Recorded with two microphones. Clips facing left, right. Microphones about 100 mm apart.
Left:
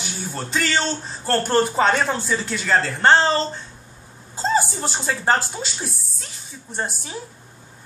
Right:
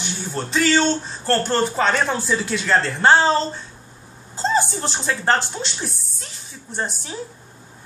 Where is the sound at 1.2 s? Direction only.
10° left (ahead or behind).